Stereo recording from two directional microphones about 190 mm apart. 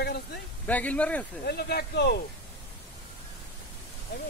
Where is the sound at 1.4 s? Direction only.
55° left (ahead or behind).